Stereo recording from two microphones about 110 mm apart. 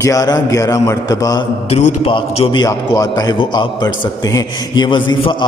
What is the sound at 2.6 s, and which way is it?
A man's voice, 35° left (ahead or behind).